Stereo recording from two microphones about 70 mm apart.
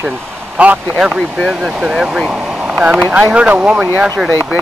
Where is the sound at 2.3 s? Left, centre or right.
Centre.